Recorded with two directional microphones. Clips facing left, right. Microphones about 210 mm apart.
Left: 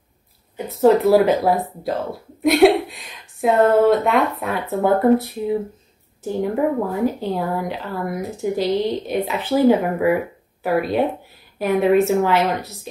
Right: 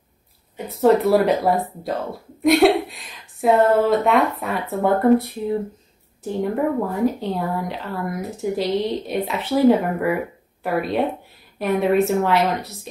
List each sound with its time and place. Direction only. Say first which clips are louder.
0.7 s a woman's voice: left 2 dB; centre (ahead or behind)